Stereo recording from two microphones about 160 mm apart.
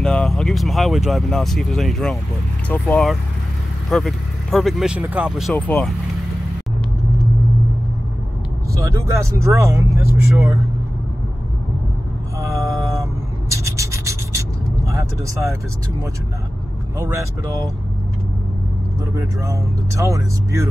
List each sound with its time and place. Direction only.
0.0 s speech: 5° left (ahead or behind)
5.5 s speech: 10° left (ahead or behind)
8.7 s speech: 20° right (ahead or behind)
12.4 s a sound: 20° right (ahead or behind)
14.9 s speech: 20° right (ahead or behind)
19.1 s speech: 20° right (ahead or behind)